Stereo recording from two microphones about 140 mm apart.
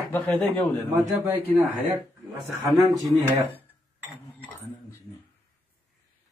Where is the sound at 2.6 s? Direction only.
Centre (ahead or behind).